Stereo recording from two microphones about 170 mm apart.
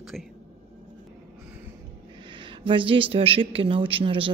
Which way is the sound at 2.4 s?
30° right (ahead or behind).